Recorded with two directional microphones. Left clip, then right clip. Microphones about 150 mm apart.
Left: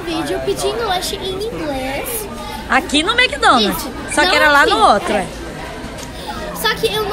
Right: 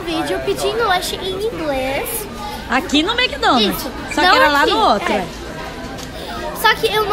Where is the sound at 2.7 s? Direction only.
15° right (ahead or behind).